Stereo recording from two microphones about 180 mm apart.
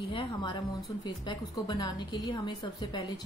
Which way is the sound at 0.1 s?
25° left (ahead or behind).